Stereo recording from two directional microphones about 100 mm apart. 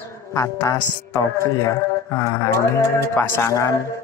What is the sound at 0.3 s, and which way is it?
Speech, 30° left (ahead or behind).